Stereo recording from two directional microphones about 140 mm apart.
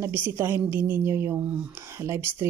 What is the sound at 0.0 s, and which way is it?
A woman's voice, 15° right (ahead or behind).